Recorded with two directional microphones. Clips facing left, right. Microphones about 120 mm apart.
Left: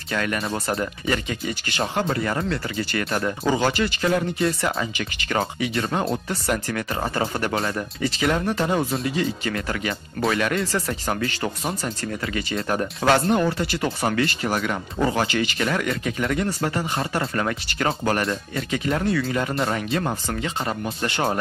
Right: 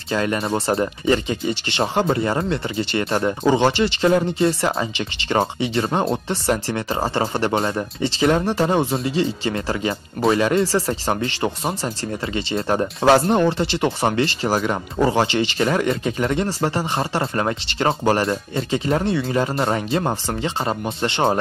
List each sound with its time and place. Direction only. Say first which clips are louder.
0.1 s speech: right 4 dB; 25° right (ahead or behind)